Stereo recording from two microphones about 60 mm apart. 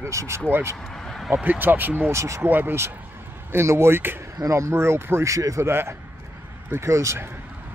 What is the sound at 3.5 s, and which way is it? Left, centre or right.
Speech, right.